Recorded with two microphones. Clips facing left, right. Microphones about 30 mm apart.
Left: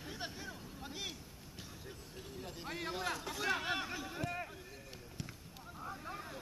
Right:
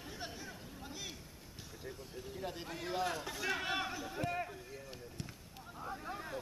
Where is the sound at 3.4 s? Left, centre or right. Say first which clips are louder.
Left 1 dB; centre.